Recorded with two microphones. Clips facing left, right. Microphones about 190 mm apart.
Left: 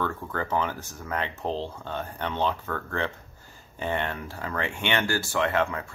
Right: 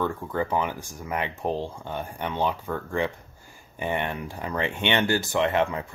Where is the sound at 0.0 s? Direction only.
15° right (ahead or behind).